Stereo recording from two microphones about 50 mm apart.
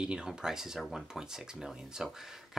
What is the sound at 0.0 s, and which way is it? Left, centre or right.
Speech, centre.